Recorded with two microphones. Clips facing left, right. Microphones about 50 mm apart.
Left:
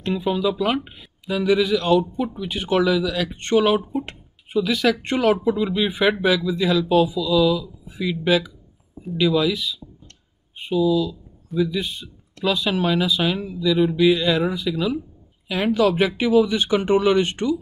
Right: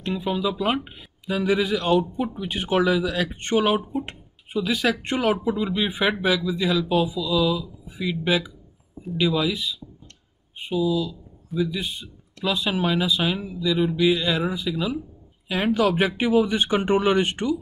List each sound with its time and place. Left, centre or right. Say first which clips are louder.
0.0 s speech: left 3 dB; centre
1.3 s speech: left 3 dB; right
3.3 s speech: left 6 dB; centre
5.1 s speech: left 4 dB; centre
5.6 s speech: left 3 dB; centre
8.0 s speech: left 3 dB; centre
9.0 s speech: left 3 dB; centre
9.3 s speech: left 5 dB; centre
10.7 s speech: left 4 dB; centre
11.5 s speech: left 3 dB; centre
12.6 s speech: left 1 dB; centre
15.4 s speech: left 2 dB; right